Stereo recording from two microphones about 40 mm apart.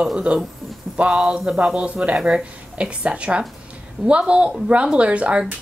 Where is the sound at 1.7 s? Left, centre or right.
Right.